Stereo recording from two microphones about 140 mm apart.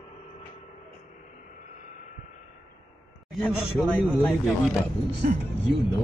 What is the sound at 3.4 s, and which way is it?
Speech, 10° left (ahead or behind).